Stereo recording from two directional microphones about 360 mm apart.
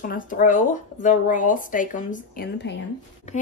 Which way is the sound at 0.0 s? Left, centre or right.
Left.